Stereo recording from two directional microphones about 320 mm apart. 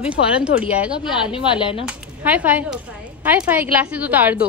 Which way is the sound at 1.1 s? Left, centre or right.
Centre.